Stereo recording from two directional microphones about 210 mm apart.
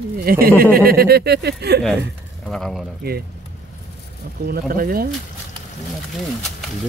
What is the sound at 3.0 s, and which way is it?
Speech, 50° right (ahead or behind).